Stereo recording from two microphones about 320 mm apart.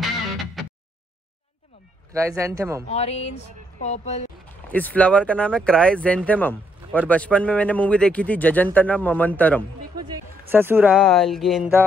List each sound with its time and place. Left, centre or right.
0.6 s a sound: centre
2.1 s speech: centre
2.9 s speech: centre
4.6 s speech: centre
10.0 s speech: centre